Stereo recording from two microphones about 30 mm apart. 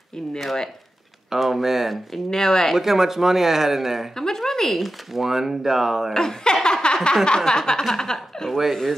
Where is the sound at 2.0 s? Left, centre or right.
Centre.